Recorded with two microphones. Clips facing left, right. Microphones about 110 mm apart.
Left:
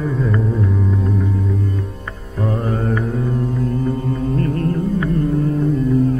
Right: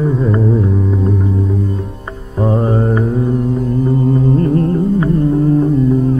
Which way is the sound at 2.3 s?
25° right (ahead or behind).